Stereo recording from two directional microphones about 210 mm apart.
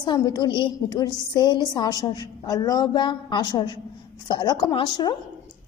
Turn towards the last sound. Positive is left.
turn(degrees=20)  # may be behind; listen again after turning